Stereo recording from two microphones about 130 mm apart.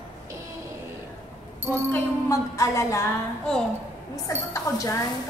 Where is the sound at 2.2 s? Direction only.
20° left (ahead or behind).